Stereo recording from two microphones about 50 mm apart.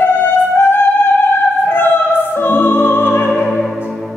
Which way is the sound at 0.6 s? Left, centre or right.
Left.